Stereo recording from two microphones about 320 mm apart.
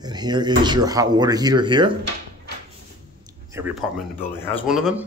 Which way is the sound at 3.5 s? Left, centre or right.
Centre.